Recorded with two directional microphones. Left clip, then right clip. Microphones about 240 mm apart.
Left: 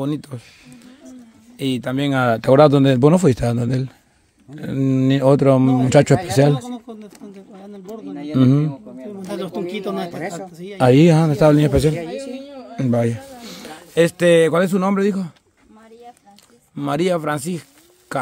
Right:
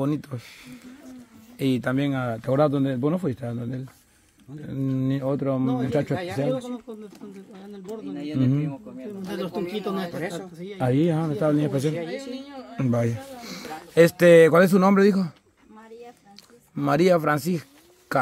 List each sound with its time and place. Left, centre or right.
0.0 s speech: centre
1.6 s speech: centre
2.1 s a man's voice: left
6.4 s a sound: left
8.3 s a man's voice: left
12.1 s a sound: centre
12.7 s speech: centre
13.4 s speech: centre
16.7 s speech: centre